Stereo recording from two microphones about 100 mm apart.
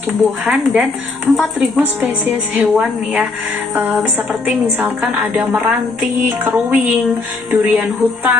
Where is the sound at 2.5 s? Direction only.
10° right (ahead or behind).